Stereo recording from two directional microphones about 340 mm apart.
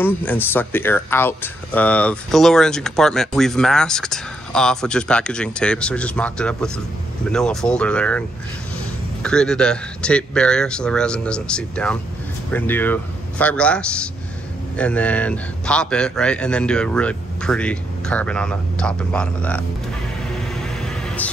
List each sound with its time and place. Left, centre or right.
0.0 s speech: centre
9.2 s speech: centre
20.3 s vehicle: centre